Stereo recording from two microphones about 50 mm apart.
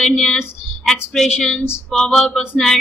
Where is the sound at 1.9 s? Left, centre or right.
Centre.